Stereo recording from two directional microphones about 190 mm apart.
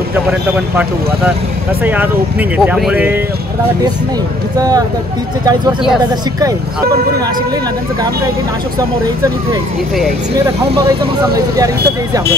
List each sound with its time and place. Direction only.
2.5 s speech: 5° right (ahead or behind)
4.6 s speech: 20° right (ahead or behind)
8.7 s speech: 20° right (ahead or behind)
11.3 s speech: 20° right (ahead or behind)